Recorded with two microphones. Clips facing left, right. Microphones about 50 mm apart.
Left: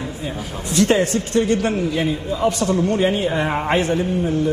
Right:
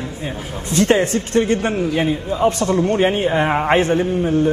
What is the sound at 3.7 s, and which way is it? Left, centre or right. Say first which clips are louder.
Speech: right 2 dB; right.